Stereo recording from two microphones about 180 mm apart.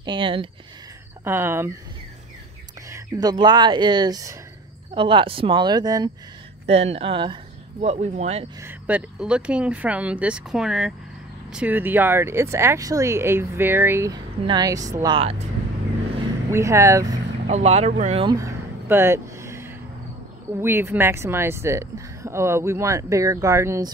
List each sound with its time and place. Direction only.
0.0 s speech: 25° right (ahead or behind)
1.2 s speech: 10° right (ahead or behind)
2.9 s speech: 20° right (ahead or behind)
6.7 s speech: 35° right (ahead or behind)
8.6 s speech: 10° right (ahead or behind)
15.1 s speech: 35° right (ahead or behind)
16.4 s speech: 15° right (ahead or behind)
17.5 s speech: 35° right (ahead or behind)
18.2 s a sound: 20° right (ahead or behind)
20.6 s speech: 10° right (ahead or behind)